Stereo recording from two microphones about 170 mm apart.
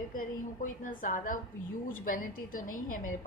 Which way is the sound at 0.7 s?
50° left (ahead or behind).